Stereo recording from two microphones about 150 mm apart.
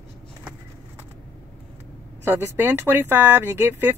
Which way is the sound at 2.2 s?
15° right (ahead or behind).